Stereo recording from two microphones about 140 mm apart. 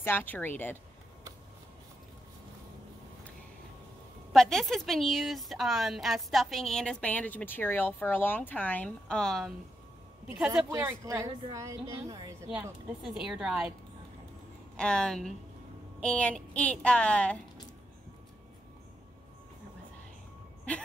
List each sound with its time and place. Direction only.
0.0 s speech: 15° left (ahead or behind)
4.3 s a woman's voice: centre (ahead or behind)
10.2 s speech: 10° right (ahead or behind)
10.7 s speech: 20° right (ahead or behind)
13.0 s a woman's voice: 5° right (ahead or behind)
14.8 s a woman's voice: 5° left (ahead or behind)